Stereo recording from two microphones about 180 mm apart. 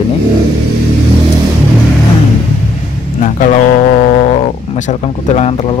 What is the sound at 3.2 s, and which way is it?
Speech, 45° left (ahead or behind).